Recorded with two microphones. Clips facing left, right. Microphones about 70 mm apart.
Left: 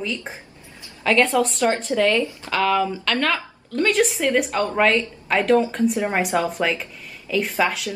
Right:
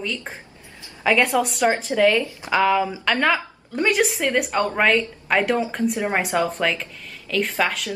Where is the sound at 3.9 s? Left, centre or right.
Centre.